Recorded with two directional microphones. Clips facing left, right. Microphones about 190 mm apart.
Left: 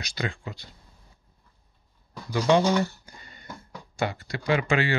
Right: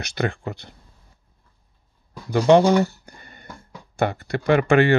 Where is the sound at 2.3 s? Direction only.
55° right (ahead or behind).